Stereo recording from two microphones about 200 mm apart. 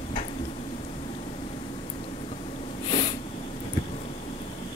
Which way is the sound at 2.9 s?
25° left (ahead or behind).